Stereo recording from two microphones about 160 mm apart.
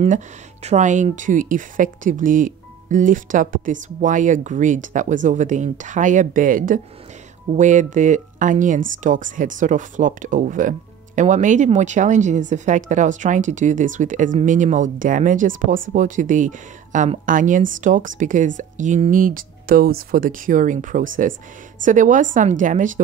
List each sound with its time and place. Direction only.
0.1 s speech: 45° right (ahead or behind)